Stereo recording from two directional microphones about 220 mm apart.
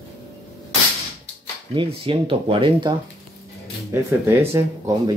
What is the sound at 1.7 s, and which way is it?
Speech, 25° right (ahead or behind).